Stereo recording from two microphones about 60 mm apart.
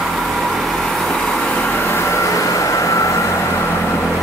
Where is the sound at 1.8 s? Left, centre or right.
Left.